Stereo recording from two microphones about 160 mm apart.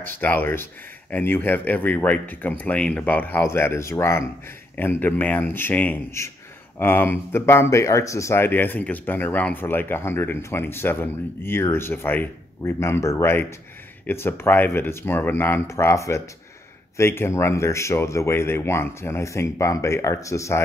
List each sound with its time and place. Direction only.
0.0 s speech: 15° left (ahead or behind)